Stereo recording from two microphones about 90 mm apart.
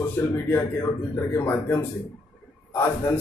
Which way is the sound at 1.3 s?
25° left (ahead or behind).